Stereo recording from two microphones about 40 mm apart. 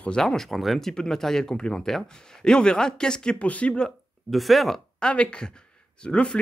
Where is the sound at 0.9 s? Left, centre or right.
Centre.